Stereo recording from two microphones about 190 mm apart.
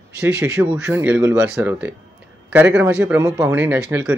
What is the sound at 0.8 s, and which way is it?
Speech, 10° right (ahead or behind).